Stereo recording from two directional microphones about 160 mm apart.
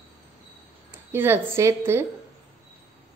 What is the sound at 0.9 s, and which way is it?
A woman's voice, 15° right (ahead or behind).